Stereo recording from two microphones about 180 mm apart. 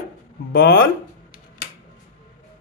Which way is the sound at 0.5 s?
60° left (ahead or behind).